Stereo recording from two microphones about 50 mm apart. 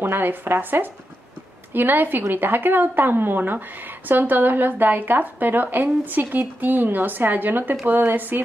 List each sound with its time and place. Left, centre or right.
0.0 s a woman's voice: right